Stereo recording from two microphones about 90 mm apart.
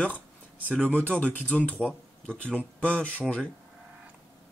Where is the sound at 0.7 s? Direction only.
15° left (ahead or behind).